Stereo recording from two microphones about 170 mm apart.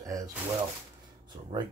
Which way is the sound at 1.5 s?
25° right (ahead or behind).